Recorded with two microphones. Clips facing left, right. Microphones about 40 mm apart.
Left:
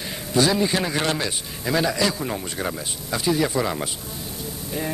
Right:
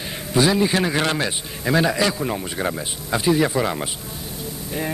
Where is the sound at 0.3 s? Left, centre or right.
Centre.